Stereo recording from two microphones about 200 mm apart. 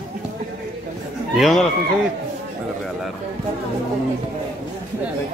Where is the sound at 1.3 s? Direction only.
Centre (ahead or behind).